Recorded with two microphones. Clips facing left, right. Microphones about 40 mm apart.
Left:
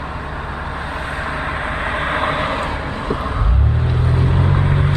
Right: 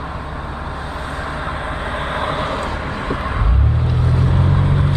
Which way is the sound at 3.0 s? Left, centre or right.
Centre.